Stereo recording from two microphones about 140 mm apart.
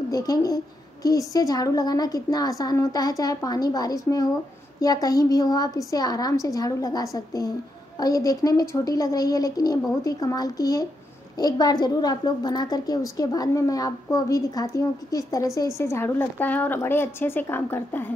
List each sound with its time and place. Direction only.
0.1 s a woman's voice: 25° left (ahead or behind)